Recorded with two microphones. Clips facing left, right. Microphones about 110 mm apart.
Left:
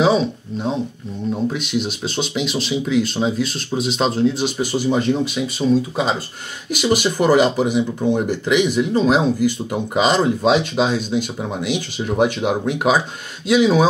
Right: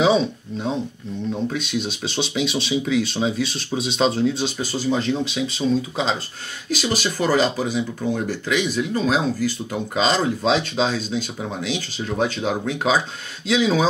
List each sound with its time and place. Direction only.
1.3 s speech: 10° left (ahead or behind)
4.6 s speech: 15° left (ahead or behind)